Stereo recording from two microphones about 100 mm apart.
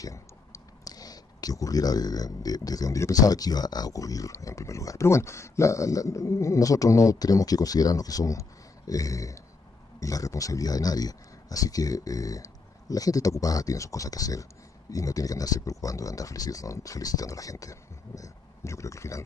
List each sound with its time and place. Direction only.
0.0 s speech: 35° left (ahead or behind)